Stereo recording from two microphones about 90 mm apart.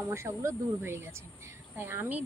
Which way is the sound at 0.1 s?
30° right (ahead or behind).